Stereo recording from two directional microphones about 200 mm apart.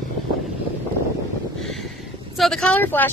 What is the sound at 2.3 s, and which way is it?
Speech, centre (ahead or behind).